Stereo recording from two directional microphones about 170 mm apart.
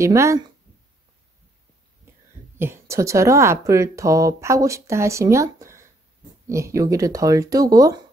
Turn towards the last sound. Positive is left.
turn(degrees=-20)  # may be behind; listen again after turning